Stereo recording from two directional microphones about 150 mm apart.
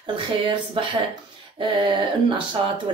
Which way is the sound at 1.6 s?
30° right (ahead or behind).